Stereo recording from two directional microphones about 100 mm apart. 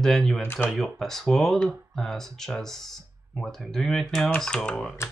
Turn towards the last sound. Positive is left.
turn(degrees=10)  # may be behind; listen again after turning